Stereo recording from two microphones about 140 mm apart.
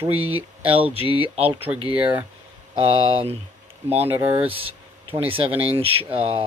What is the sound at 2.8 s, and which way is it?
Speech, 40° right (ahead or behind).